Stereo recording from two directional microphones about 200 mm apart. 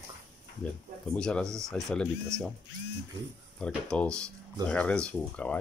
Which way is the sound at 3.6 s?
5° left (ahead or behind).